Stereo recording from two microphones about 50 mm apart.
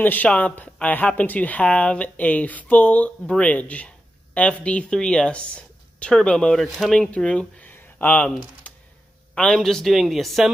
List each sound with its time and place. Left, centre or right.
0.0 s speech: left
0.3 s a man's voice: left
6.6 s speech: centre
7.2 s speech: left
7.6 s a sound: left
9.5 s a man's voice: centre
9.9 s speech: centre